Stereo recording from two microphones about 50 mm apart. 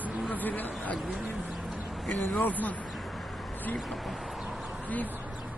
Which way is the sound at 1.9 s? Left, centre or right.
Centre.